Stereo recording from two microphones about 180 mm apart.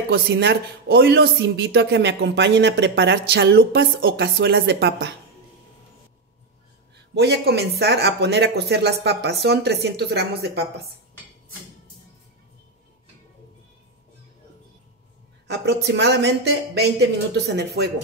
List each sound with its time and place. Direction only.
0.1 s speech: 70° right (ahead or behind)
7.2 s speech: 65° right (ahead or behind)
15.4 s speech: 70° right (ahead or behind)